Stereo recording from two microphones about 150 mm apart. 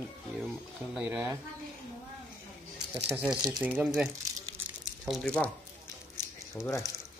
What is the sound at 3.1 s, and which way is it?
Speech, 20° right (ahead or behind).